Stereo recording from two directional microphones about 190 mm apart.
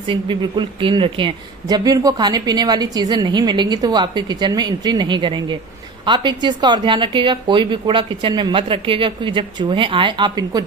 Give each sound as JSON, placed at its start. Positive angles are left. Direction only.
{"t": 0.0, "sound": "speech", "side_deg": -25}